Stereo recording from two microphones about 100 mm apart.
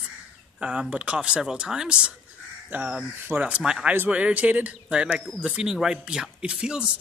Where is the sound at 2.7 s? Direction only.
20° right (ahead or behind).